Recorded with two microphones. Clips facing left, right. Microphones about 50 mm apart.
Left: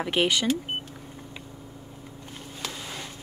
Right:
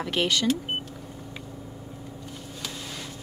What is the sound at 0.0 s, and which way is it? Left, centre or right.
Speech, centre.